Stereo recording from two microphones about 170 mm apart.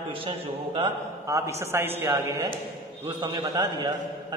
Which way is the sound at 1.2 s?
20° right (ahead or behind).